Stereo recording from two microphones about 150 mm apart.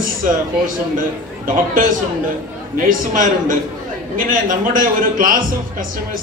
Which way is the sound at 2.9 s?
65° right (ahead or behind).